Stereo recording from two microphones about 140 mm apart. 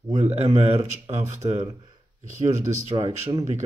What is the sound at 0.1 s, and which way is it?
Speech, 55° right (ahead or behind).